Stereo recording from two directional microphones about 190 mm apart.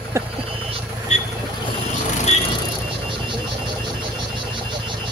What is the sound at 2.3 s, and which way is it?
Music, 35° left (ahead or behind).